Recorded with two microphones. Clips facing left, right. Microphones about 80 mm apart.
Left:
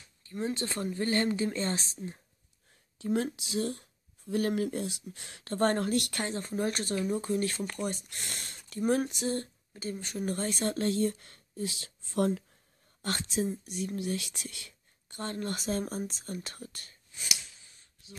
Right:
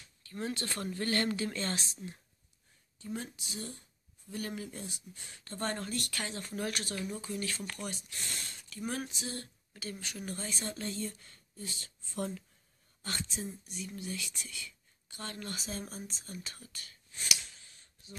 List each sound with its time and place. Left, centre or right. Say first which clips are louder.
0.3 s speech: left 4 dB; centre
3.0 s speech: left 11 dB; left
4.3 s speech: left 11 dB; left
6.1 s speech: left 6 dB; left
10.3 s speech: left 9 dB; left
13.0 s speech: left 8 dB; left
15.1 s speech: left 7 dB; left
15.5 s speech: left 9 dB; left